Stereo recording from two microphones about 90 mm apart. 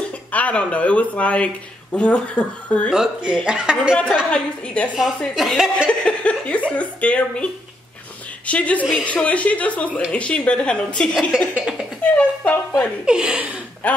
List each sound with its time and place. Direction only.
0.3 s a woman's voice: 15° left (ahead or behind)
2.9 s speech: 5° right (ahead or behind)
3.9 s a woman's voice: 10° left (ahead or behind)
5.3 s speech: 5° right (ahead or behind)
5.9 s a woman's voice: 15° left (ahead or behind)
12.0 s a woman's voice: 15° left (ahead or behind)
13.0 s speech: 10° right (ahead or behind)
13.8 s a woman's voice: 15° left (ahead or behind)